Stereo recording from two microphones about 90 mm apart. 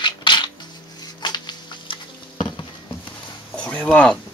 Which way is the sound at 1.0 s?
55° left (ahead or behind).